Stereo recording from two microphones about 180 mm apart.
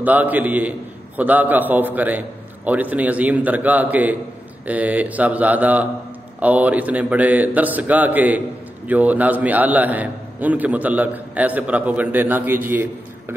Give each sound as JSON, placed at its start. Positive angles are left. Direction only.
{"t": 0.0, "sound": "a man's voice", "side_deg": -10}